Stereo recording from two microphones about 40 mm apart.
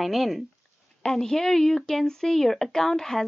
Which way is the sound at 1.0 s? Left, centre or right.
Centre.